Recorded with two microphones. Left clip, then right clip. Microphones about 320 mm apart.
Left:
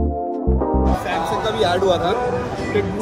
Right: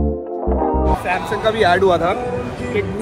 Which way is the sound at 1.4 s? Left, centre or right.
Right.